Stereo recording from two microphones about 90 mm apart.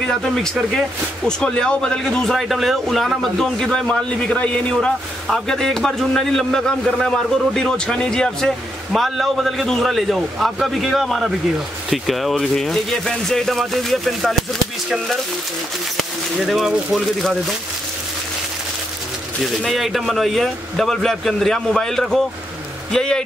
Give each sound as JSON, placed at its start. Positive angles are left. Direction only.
{"t": 0.0, "sound": "speech", "side_deg": 5}
{"t": 16.0, "sound": "speech", "side_deg": 0}
{"t": 19.4, "sound": "speech", "side_deg": 0}